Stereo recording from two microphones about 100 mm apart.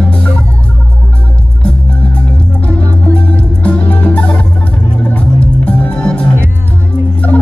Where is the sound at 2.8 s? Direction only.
35° right (ahead or behind).